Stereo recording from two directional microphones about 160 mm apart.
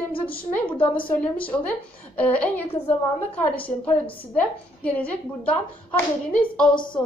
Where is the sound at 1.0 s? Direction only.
10° left (ahead or behind).